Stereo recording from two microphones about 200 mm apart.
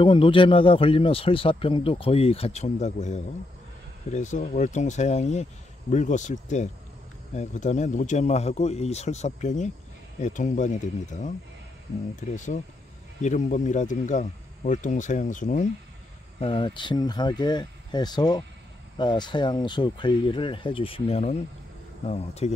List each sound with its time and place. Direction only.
0.0 s a man's voice: 25° left (ahead or behind)
16.3 s a man's voice: 25° left (ahead or behind)